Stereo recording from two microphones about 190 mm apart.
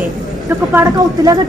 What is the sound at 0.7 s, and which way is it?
Speech, 20° right (ahead or behind).